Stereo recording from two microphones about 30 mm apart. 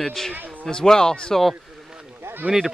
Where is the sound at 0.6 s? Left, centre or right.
Left.